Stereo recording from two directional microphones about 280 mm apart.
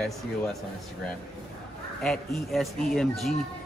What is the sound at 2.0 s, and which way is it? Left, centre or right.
Speech, centre.